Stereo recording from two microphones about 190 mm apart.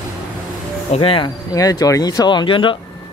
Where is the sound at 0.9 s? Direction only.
30° left (ahead or behind).